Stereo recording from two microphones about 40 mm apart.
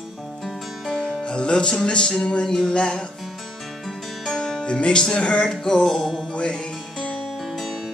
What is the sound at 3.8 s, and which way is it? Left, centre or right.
Music, centre.